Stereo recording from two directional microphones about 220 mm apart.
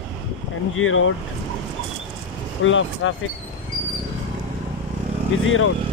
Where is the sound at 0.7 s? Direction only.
65° left (ahead or behind).